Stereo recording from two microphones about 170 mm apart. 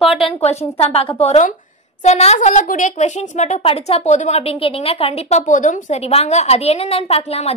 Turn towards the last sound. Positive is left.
turn(degrees=35)  # may be behind; listen again after turning